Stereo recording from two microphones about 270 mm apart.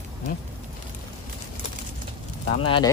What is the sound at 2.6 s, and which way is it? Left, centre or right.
Speech, centre.